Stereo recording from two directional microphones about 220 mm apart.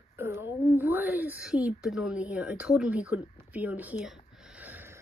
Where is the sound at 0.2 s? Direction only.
10° right (ahead or behind).